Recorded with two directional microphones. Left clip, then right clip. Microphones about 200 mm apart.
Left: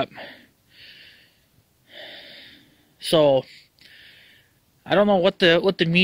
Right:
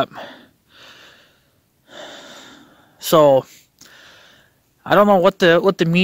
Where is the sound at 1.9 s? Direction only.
25° right (ahead or behind).